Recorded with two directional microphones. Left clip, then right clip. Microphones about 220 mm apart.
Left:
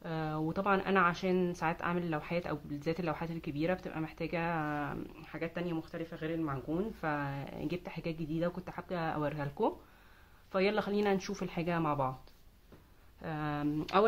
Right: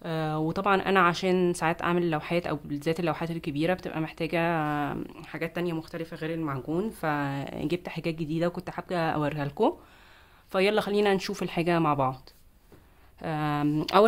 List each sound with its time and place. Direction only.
0.0 s speech: 45° right (ahead or behind)
13.2 s speech: 45° right (ahead or behind)